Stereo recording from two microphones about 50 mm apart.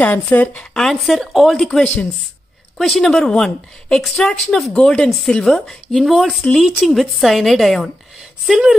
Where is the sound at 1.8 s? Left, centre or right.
Left.